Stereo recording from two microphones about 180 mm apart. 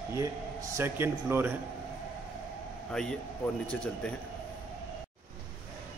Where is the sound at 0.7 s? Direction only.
15° right (ahead or behind).